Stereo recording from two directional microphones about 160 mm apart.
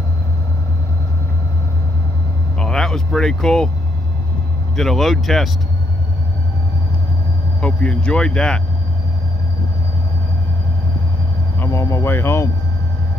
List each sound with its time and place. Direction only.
2.6 s speech: 5° left (ahead or behind)
4.7 s speech: centre (ahead or behind)
7.6 s speech: 5° left (ahead or behind)
11.6 s speech: 20° left (ahead or behind)